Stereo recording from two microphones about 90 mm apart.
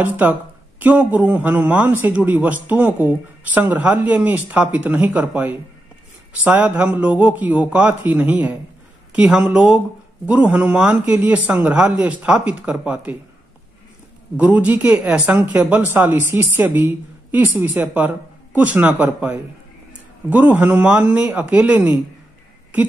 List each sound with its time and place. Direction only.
0.0 s speech: 20° right (ahead or behind)
14.3 s speech: 15° right (ahead or behind)